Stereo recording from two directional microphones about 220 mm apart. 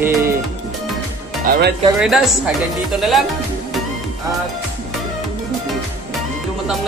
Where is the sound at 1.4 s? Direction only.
45° right (ahead or behind).